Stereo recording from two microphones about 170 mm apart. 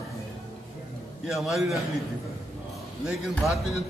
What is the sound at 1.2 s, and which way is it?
Speech, centre (ahead or behind).